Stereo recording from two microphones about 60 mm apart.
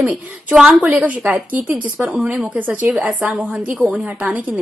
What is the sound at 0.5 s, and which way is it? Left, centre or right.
Speech, centre.